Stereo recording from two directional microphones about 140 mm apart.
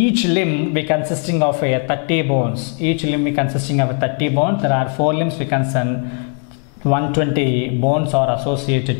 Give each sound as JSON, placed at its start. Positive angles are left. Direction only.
{"t": 0.0, "sound": "speech", "side_deg": 5}
{"t": 6.9, "sound": "speech", "side_deg": 10}